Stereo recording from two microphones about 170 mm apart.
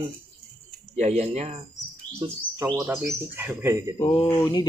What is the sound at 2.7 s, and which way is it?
Speech, 15° right (ahead or behind).